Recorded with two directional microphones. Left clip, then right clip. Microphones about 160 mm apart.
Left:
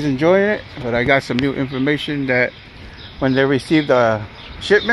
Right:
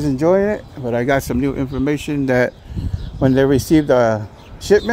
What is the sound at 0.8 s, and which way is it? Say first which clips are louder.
Speech: left 2 dB; 35° right (ahead or behind).